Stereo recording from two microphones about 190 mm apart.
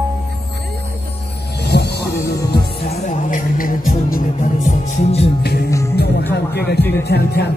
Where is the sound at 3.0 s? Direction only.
40° left (ahead or behind).